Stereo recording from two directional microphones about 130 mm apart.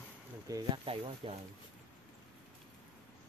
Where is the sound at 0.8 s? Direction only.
45° right (ahead or behind).